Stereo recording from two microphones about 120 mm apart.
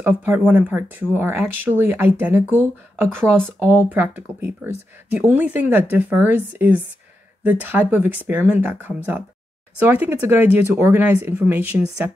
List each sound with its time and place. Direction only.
0.0 s speech: 15° right (ahead or behind)